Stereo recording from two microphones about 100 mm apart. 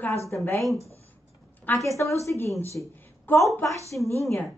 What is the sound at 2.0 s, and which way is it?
Speech, 30° left (ahead or behind).